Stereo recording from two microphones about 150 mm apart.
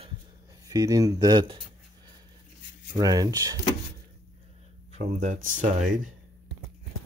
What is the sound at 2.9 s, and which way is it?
Speech, 25° right (ahead or behind).